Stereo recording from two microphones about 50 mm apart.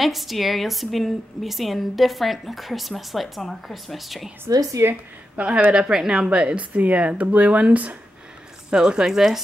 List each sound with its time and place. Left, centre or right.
0.0 s a woman's voice: centre
4.8 s a woman's voice: right
5.3 s speech: right
8.6 s speech: centre